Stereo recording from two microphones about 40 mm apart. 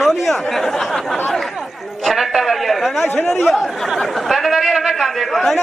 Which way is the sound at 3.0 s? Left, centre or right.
Left.